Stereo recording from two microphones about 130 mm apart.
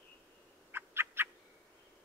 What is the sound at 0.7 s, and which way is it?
Frog, 15° right (ahead or behind).